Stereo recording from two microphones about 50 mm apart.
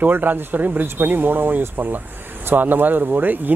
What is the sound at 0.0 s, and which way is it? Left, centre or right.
Speech, right.